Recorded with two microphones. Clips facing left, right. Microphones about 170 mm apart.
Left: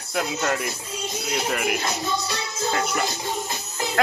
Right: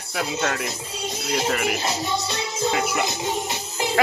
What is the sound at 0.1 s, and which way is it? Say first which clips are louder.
Speech: left 1 dB; centre (ahead or behind).